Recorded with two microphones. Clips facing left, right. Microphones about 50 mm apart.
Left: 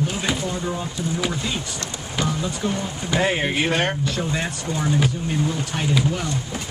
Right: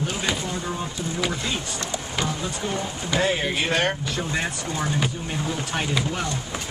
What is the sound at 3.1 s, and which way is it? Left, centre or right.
Speech, left.